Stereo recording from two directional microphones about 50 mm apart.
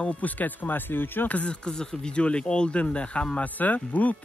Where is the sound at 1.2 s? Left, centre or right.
Left.